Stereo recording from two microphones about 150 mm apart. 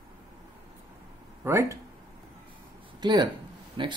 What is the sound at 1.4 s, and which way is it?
Speech, 20° right (ahead or behind).